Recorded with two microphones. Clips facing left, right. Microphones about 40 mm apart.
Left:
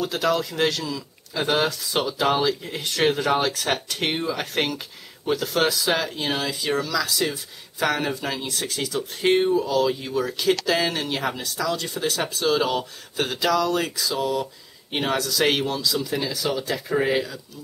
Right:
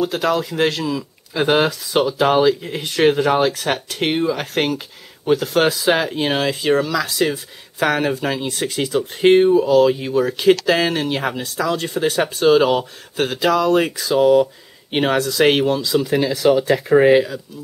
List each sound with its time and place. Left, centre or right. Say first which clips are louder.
0.0 s speech: right 4 dB; centre
1.8 s speech: right 7 dB; centre; by 9.4 s right
9.4 s speech: right 8 dB; centre
11.4 s speech: right 5 dB; right